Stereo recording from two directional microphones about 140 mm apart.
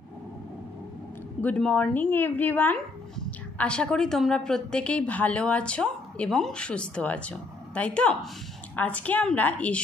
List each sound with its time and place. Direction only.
1.4 s speech: 10° left (ahead or behind)